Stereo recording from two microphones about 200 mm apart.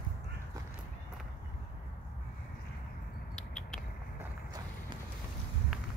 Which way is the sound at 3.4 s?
5° left (ahead or behind).